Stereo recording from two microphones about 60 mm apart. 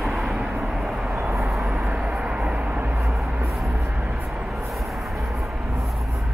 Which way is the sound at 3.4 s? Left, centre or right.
Centre.